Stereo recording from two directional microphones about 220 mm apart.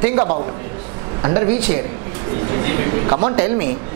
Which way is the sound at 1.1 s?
25° right (ahead or behind).